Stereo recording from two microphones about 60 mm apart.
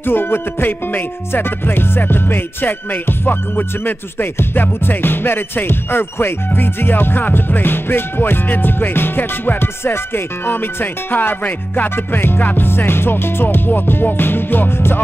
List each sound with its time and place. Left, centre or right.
0.0 s music: left